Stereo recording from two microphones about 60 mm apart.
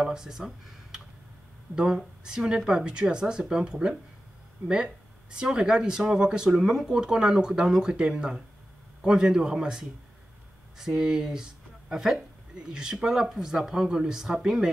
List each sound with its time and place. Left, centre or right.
0.0 s speech: centre
1.7 s speech: right
2.2 s speech: centre